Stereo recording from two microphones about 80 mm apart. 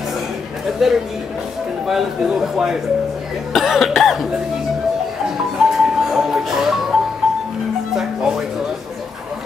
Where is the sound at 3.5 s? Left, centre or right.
Centre.